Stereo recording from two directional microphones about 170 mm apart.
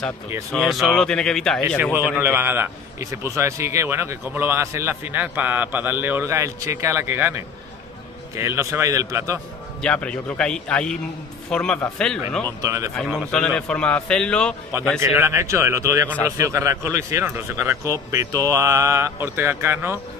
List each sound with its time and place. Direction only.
0.5 s speech: centre (ahead or behind)
2.0 s a man's voice: 10° right (ahead or behind)
9.8 s speech: 5° left (ahead or behind)
12.6 s a man's voice: 20° right (ahead or behind)
13.3 s speech: 5° left (ahead or behind)
15.0 s a man's voice: 15° right (ahead or behind)